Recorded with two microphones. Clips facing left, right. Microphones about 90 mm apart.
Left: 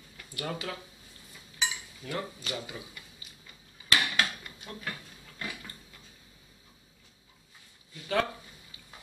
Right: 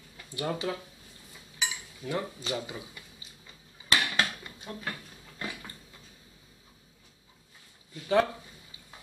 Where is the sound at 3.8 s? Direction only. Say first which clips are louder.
Right 1 dB; 25° right (ahead or behind).